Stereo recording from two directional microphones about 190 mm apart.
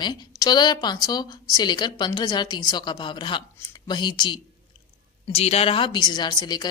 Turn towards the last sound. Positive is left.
turn(degrees=20)  # may be behind; listen again after turning